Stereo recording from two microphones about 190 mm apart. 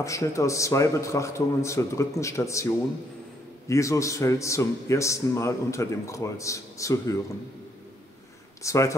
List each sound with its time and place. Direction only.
0.0 s a man's voice: 15° left (ahead or behind)
8.6 s a man's voice: 15° left (ahead or behind)